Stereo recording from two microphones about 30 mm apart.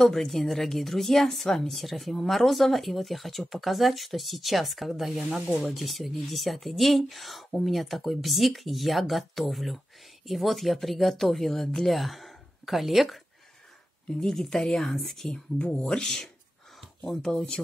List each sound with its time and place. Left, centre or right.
0.0 s speech: centre
14.2 s speech: centre
16.8 s speech: centre